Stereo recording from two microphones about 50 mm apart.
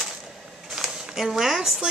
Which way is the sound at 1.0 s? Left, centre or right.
Centre.